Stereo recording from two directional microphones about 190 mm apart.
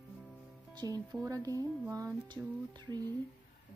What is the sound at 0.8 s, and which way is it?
A woman's voice, 20° right (ahead or behind).